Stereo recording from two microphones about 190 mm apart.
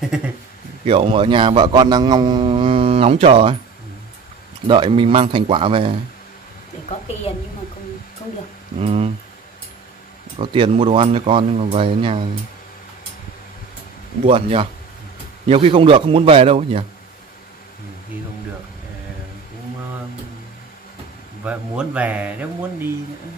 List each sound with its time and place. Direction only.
0.0 s a man's voice: 5° right (ahead or behind)
0.8 s a man's voice: 30° right (ahead or behind)
4.6 s a man's voice: 25° right (ahead or behind)
8.7 s a man's voice: 30° right (ahead or behind)
10.4 s a man's voice: 25° right (ahead or behind)
14.2 s a man's voice: 30° right (ahead or behind)
21.5 s speech: 5° right (ahead or behind)